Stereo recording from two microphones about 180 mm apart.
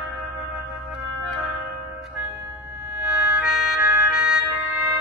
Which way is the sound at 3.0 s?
5° right (ahead or behind).